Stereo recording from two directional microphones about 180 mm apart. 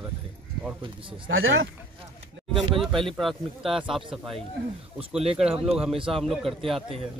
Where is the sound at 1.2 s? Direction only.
90° right.